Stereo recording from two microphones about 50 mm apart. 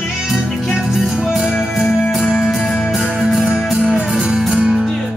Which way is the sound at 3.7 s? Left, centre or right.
Centre.